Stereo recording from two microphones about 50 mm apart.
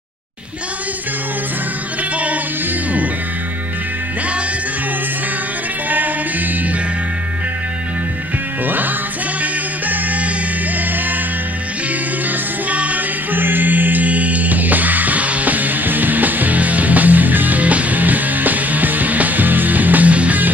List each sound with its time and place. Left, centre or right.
5.9 s music: right
8.6 s music: right
12.6 s music: right